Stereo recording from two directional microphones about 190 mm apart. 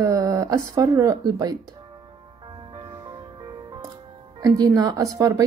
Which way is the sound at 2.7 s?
20° right (ahead or behind).